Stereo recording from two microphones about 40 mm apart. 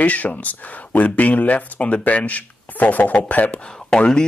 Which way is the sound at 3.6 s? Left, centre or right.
Centre.